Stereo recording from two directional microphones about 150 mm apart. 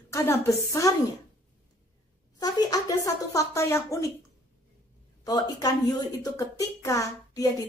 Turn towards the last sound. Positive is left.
turn(degrees=20)  # may be behind; listen again after turning